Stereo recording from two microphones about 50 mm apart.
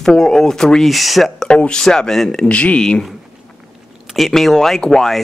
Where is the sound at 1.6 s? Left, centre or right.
Centre.